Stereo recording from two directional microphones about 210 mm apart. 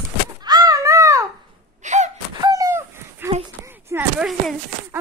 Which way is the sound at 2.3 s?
20° right (ahead or behind).